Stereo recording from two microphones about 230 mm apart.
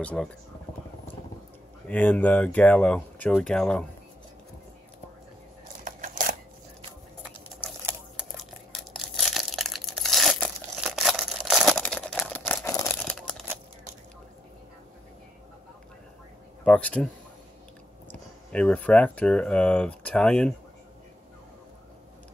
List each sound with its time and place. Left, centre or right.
0.0 s speech: centre
1.9 s speech: centre
5.9 s a sound: right
7.8 s crumpling: centre
16.6 s speech: centre
18.5 s speech: centre